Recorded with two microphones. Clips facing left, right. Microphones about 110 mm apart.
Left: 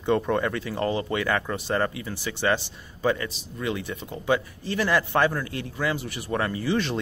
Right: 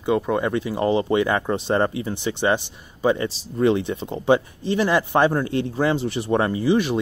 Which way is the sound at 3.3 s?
30° right (ahead or behind).